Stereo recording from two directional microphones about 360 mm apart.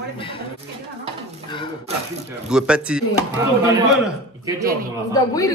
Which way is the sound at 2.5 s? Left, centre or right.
Centre.